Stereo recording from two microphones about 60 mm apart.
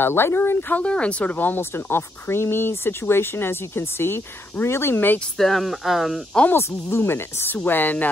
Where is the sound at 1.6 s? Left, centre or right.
Left.